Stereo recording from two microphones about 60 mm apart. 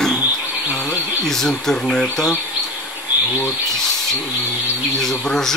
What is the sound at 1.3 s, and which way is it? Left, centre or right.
Speech, centre.